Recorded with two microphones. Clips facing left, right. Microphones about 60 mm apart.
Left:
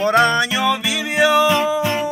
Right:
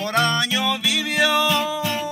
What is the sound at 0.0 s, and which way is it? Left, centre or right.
Music, left.